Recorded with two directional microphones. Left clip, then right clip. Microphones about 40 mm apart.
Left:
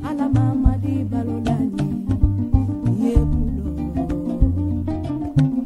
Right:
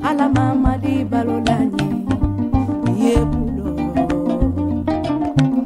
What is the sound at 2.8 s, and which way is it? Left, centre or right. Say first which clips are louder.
Music: right 6 dB; right.